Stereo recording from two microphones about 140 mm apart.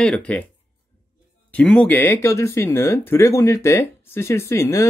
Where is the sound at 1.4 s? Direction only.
5° left (ahead or behind).